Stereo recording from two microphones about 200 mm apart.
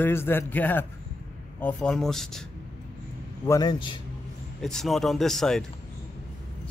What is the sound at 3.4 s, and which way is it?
Speech, 15° left (ahead or behind).